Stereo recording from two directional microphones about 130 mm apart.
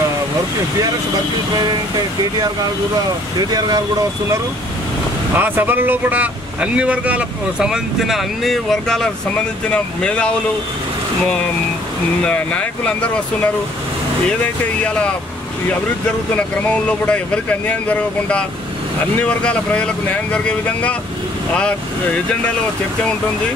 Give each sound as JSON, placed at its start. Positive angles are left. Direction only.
{"t": 3.5, "sound": "speech", "side_deg": -30}
{"t": 5.3, "sound": "speech", "side_deg": -15}
{"t": 12.2, "sound": "speech", "side_deg": 10}
{"t": 14.8, "sound": "speech", "side_deg": 10}
{"t": 16.3, "sound": "speech", "side_deg": 10}